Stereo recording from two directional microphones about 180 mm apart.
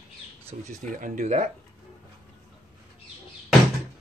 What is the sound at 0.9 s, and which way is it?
Speech, 45° right (ahead or behind).